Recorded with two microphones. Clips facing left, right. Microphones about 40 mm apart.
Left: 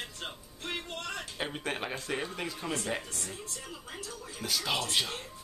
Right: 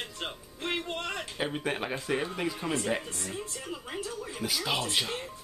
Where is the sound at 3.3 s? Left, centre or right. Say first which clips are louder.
Right 5 dB; centre.